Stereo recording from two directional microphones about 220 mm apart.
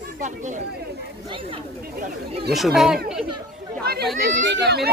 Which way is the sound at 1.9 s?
40° right (ahead or behind).